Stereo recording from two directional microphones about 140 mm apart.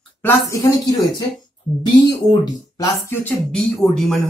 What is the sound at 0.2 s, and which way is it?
Speech, 25° left (ahead or behind).